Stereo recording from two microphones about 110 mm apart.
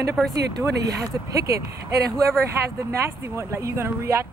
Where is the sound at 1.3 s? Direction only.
30° right (ahead or behind).